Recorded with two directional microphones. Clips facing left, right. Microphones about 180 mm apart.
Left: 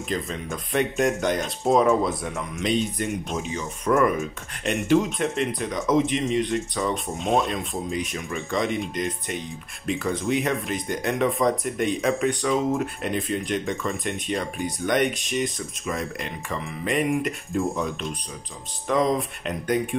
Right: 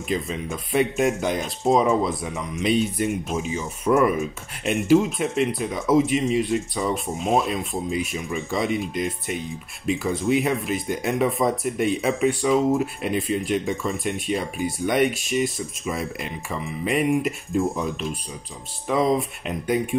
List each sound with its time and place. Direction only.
0.1 s speech: 5° right (ahead or behind)